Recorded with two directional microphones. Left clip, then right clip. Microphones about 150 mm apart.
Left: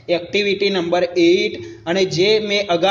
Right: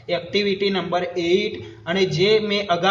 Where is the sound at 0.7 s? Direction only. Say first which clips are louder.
Left 5 dB; 30° left (ahead or behind).